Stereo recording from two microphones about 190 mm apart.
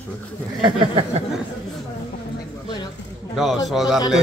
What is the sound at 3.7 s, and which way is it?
Speech, centre (ahead or behind).